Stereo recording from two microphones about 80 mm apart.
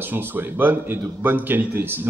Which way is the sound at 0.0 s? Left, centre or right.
Right.